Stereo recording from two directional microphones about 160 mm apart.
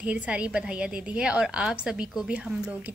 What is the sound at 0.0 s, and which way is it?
A woman's voice, 10° right (ahead or behind).